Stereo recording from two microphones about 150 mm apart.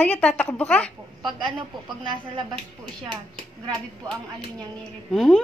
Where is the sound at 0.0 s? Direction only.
10° left (ahead or behind).